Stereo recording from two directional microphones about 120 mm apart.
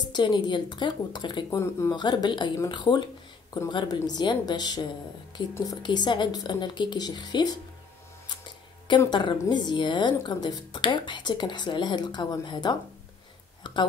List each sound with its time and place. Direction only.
0.1 s a woman's voice: 35° left (ahead or behind)
1.5 s speech: 25° left (ahead or behind)
1.9 s a woman's voice: 35° left (ahead or behind)
9.1 s a woman's voice: 40° left (ahead or behind)